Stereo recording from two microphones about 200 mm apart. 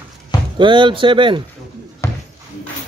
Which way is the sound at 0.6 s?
25° right (ahead or behind).